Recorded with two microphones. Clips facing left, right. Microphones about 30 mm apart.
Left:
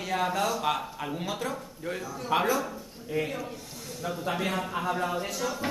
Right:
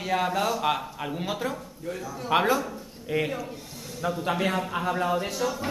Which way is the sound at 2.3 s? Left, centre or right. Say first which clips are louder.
Right 3 dB; right.